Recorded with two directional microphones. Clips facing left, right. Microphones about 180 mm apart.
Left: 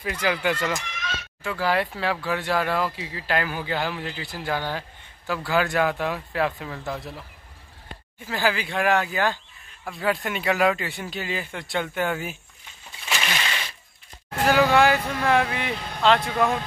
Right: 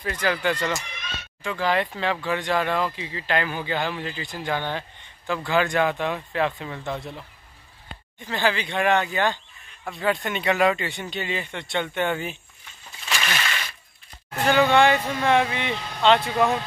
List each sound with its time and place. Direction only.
0.0 s speech: 10° left (ahead or behind)
8.2 s speech: 5° left (ahead or behind)
13.1 s a sound: 15° left (ahead or behind)
14.5 s speech: 5° left (ahead or behind)